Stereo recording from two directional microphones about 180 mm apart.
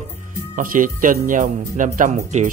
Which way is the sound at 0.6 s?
50° right (ahead or behind).